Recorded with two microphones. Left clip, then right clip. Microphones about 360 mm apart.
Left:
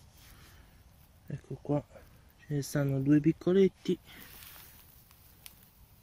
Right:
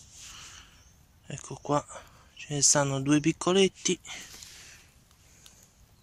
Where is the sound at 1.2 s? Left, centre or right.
Right.